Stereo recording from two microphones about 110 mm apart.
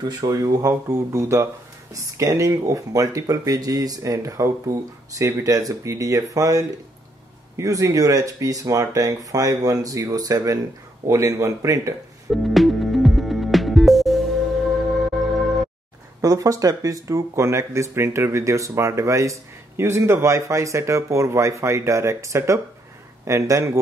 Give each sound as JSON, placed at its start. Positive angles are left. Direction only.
{"t": 0.0, "sound": "speech", "side_deg": -35}
{"t": 12.3, "sound": "music", "side_deg": 0}
{"t": 16.2, "sound": "speech", "side_deg": -30}